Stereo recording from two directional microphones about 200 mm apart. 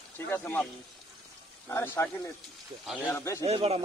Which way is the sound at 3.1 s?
15° left (ahead or behind).